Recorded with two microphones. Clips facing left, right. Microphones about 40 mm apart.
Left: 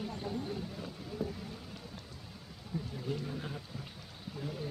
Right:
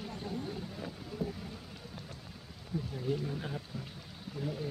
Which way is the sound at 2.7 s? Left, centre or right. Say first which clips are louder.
Right 3 dB; centre.